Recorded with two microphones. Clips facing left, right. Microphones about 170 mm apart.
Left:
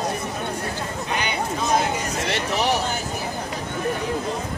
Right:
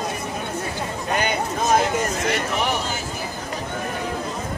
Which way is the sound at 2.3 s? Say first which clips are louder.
Even; 35° left (ahead or behind).